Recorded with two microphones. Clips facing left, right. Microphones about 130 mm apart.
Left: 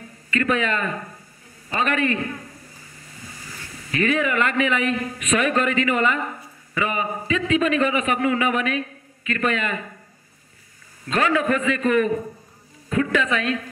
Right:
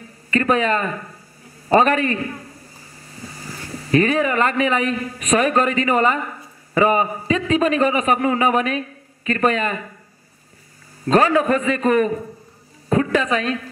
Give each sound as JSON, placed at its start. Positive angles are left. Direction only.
{"t": 0.3, "sound": "a man's voice", "side_deg": -35}
{"t": 3.3, "sound": "a man's voice", "side_deg": -40}
{"t": 11.1, "sound": "a man's voice", "side_deg": -35}